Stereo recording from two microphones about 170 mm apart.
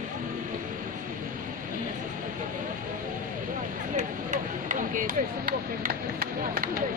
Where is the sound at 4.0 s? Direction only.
45° right (ahead or behind).